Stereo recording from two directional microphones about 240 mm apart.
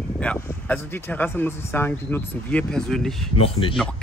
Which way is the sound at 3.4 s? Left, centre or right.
Left.